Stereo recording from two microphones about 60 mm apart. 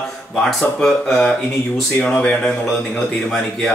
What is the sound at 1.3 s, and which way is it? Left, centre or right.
Speech, centre.